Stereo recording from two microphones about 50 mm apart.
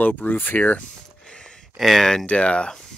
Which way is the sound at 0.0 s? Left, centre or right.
Left.